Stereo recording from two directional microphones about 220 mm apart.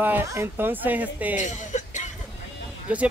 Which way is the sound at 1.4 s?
35° left (ahead or behind).